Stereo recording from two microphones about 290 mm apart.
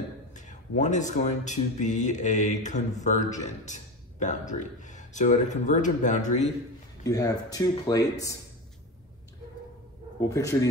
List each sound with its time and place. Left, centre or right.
0.3 s speech: left
7.1 s speech: centre
10.2 s speech: centre